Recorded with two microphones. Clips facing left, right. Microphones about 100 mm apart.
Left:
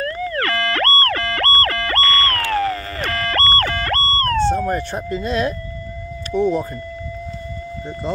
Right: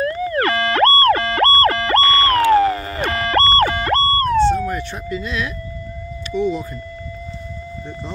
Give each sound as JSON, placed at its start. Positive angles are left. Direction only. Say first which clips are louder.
{"t": 0.0, "sound": "siren", "louder": "right 4 dB", "side_deg": -20}
{"t": 4.6, "sound": "speech", "louder": "left 3 dB", "side_deg": 40}